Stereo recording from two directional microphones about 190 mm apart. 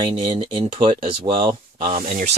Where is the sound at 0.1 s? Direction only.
25° right (ahead or behind).